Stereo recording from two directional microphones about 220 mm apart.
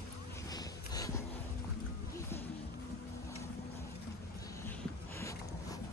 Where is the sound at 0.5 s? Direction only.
15° left (ahead or behind).